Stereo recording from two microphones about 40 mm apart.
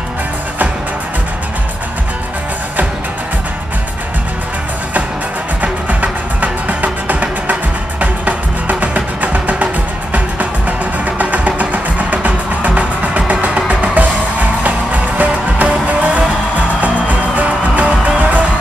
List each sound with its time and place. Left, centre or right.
5.6 s music: right
11.1 s music: right